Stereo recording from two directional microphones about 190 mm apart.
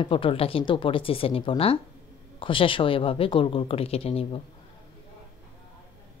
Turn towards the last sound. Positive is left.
turn(degrees=30)  # may be behind; listen again after turning